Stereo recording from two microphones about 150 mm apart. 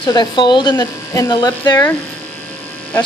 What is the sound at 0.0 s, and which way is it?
Speech, 30° left (ahead or behind).